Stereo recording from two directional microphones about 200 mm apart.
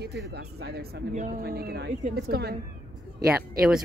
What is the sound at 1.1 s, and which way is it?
Speech, 40° right (ahead or behind).